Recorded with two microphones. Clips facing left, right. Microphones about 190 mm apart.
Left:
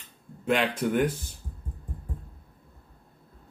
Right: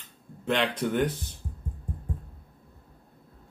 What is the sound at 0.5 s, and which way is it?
Speech, 10° left (ahead or behind).